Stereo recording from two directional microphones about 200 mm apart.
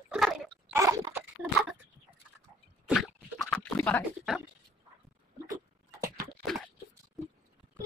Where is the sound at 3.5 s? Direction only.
10° left (ahead or behind).